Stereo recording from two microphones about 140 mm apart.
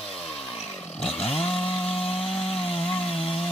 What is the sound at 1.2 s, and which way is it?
Chainsaw, 45° left (ahead or behind).